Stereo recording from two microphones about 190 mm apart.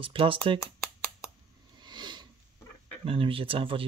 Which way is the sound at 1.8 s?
25° right (ahead or behind).